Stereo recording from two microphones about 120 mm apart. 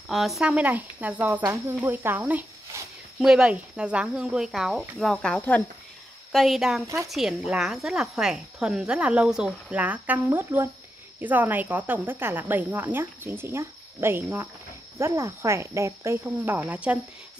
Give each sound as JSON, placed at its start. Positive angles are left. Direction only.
{"t": 0.1, "sound": "speech", "side_deg": 0}
{"t": 2.7, "sound": "a sound", "side_deg": -20}
{"t": 3.2, "sound": "speech", "side_deg": -5}